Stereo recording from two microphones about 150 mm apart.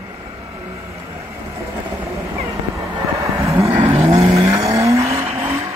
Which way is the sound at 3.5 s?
15° right (ahead or behind).